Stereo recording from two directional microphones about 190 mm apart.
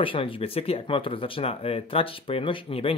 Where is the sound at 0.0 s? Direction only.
30° left (ahead or behind).